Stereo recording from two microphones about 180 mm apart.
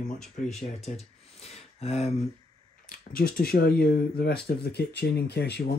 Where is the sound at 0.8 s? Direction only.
35° left (ahead or behind).